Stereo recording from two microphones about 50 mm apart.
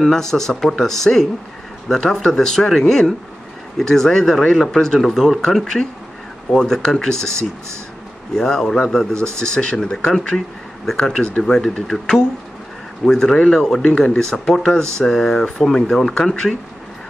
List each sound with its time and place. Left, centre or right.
0.0 s speech: centre
11.1 s speech: centre